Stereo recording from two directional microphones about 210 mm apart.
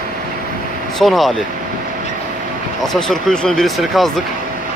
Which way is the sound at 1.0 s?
Centre (ahead or behind).